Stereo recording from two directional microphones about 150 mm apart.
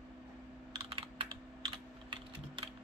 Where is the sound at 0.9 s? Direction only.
35° right (ahead or behind).